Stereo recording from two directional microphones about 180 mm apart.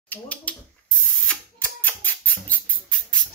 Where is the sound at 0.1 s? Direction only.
10° left (ahead or behind).